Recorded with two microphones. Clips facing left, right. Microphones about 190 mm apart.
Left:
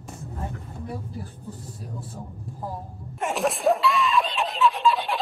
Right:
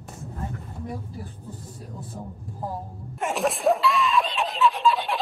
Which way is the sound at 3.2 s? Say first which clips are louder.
Even; centre (ahead or behind).